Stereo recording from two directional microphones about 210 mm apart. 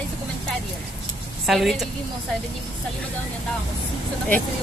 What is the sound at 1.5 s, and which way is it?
Speech, centre (ahead or behind).